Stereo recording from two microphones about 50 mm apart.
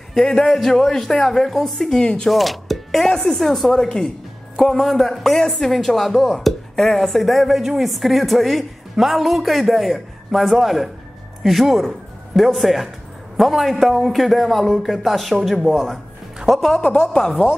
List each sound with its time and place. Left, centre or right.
0.1 s a woman's voice: centre
16.8 s a woman's voice: centre